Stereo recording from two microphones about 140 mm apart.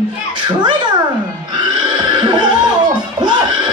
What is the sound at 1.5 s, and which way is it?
Neigh, 30° right (ahead or behind).